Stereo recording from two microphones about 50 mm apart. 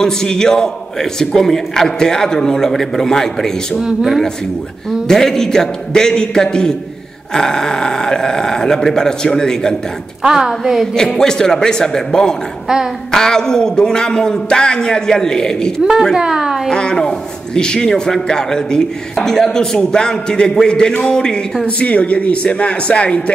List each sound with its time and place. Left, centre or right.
0.0 s a man's voice: centre
3.8 s a woman's voice: centre
5.0 s a man's voice: centre
10.2 s a woman's voice: centre
11.1 s a man's voice: centre
15.8 s a woman's voice: centre
16.6 s a man's voice: centre